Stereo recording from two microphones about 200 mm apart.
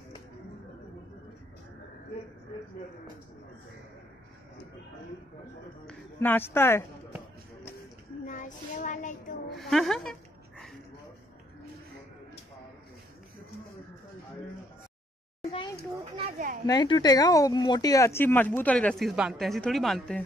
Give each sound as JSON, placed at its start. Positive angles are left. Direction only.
{"t": 5.9, "sound": "speech", "side_deg": 10}
{"t": 8.3, "sound": "a child's voice", "side_deg": 40}
{"t": 9.6, "sound": "a woman's voice", "side_deg": 0}
{"t": 15.4, "sound": "a sound", "side_deg": 25}
{"t": 16.3, "sound": "a child's voice", "side_deg": -40}
{"t": 16.6, "sound": "speech", "side_deg": 20}